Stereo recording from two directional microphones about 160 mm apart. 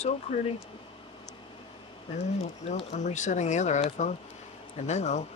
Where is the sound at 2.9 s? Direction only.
45° left (ahead or behind).